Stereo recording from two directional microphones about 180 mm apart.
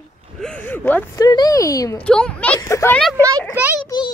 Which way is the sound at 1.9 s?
5° left (ahead or behind).